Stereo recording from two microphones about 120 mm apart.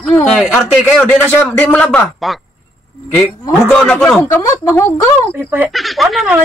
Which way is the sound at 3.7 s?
10° left (ahead or behind).